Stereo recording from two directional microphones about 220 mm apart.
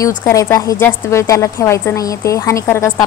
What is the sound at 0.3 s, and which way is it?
A woman's voice, 15° left (ahead or behind).